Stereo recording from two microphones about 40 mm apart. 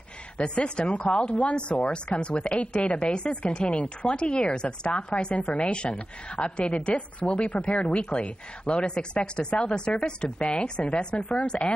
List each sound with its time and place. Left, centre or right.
0.7 s speech: left